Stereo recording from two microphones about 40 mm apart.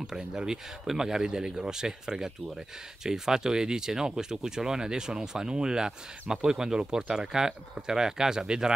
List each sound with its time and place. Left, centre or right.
0.0 s speech: centre